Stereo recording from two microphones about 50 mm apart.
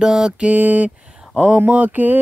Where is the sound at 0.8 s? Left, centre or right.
Centre.